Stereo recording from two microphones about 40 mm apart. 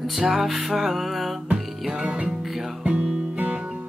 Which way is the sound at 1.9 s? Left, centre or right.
Right.